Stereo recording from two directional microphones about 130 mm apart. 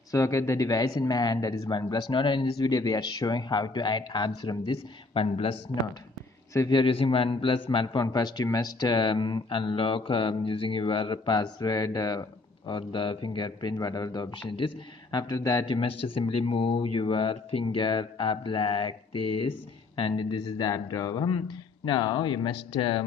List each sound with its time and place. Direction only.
0.1 s a man's voice: 25° left (ahead or behind); by 5.6 s 45° left (ahead or behind)
6.7 s a man's voice: 45° left (ahead or behind)